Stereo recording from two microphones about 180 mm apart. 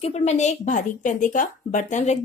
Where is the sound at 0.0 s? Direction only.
35° left (ahead or behind).